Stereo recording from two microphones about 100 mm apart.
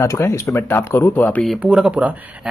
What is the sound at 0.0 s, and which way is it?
Speech, 30° left (ahead or behind).